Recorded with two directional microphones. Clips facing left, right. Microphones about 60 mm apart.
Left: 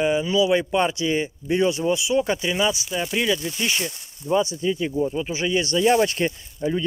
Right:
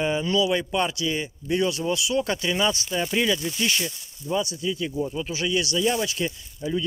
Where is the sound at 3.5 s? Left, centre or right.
Centre.